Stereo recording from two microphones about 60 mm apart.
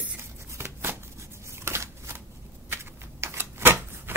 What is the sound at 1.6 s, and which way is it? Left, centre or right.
Shuffling cards, right.